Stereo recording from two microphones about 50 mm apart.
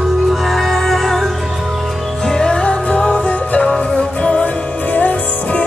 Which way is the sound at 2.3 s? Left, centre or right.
Centre.